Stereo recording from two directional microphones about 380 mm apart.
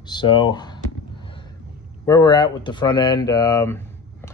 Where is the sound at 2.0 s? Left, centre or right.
Centre.